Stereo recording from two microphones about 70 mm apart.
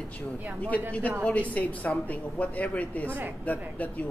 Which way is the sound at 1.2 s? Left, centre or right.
Left.